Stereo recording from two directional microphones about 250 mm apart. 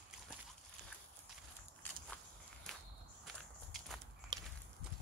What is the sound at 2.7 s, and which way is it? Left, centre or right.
Walk, centre.